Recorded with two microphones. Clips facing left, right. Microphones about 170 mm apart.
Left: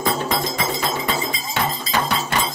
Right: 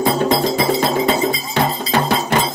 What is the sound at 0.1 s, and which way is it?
Cowbell, 35° right (ahead or behind).